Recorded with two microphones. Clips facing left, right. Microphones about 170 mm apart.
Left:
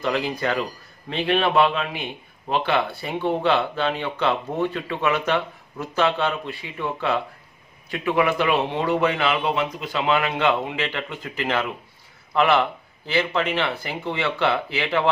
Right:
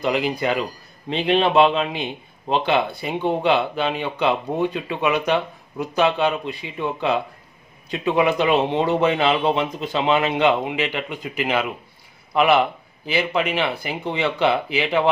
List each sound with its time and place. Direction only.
0.0 s a man's voice: 15° right (ahead or behind)